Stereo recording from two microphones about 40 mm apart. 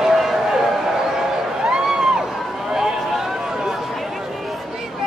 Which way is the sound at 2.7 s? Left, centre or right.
Centre.